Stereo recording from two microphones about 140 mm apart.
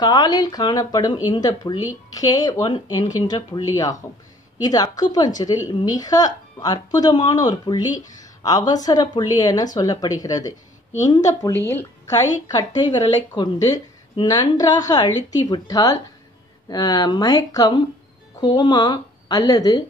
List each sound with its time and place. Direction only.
0.0 s a woman's voice: 30° left (ahead or behind)